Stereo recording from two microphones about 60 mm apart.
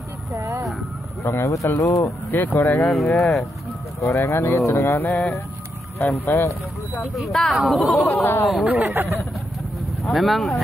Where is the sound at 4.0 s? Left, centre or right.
Left.